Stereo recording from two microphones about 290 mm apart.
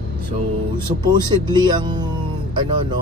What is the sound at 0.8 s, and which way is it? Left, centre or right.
Speech, centre.